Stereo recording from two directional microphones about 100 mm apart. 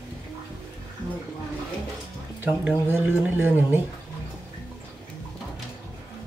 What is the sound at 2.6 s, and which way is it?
Speech, 20° right (ahead or behind).